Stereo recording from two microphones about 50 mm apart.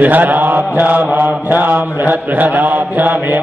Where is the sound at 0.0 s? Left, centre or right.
Right.